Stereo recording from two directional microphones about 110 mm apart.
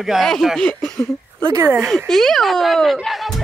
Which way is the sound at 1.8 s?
Centre (ahead or behind).